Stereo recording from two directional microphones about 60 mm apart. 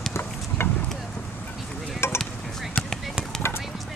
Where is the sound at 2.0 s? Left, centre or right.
Left.